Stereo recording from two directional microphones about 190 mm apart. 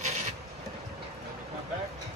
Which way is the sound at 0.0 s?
35° right (ahead or behind).